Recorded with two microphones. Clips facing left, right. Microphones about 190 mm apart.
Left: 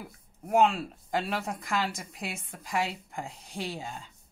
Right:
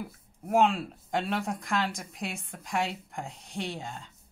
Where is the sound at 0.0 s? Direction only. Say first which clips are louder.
Right 4 dB; centre (ahead or behind).